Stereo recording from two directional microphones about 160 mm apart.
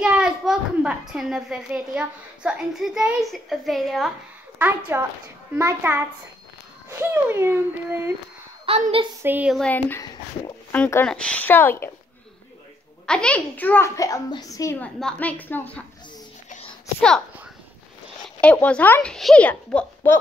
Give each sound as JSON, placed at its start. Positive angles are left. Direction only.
{"t": 0.0, "sound": "a child's voice", "side_deg": -5}
{"t": 4.6, "sound": "speech", "side_deg": -10}
{"t": 8.6, "sound": "a woman's voice", "side_deg": -40}
{"t": 9.2, "sound": "speech", "side_deg": -10}
{"t": 9.6, "sound": "a child's voice", "side_deg": 10}
{"t": 13.0, "sound": "a child's voice", "side_deg": 5}
{"t": 14.8, "sound": "a child's voice", "side_deg": 5}
{"t": 18.4, "sound": "a child's voice", "side_deg": 10}